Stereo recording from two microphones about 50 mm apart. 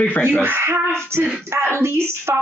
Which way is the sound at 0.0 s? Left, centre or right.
Left.